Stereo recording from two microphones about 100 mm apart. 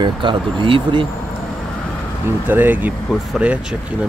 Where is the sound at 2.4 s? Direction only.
20° right (ahead or behind).